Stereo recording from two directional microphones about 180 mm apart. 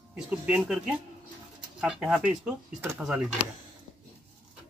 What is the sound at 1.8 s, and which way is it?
Speech, 5° right (ahead or behind).